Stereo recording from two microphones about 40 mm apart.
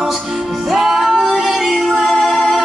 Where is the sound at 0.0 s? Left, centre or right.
Centre.